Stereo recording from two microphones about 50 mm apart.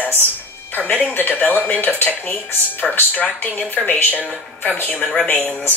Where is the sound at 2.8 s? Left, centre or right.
Centre.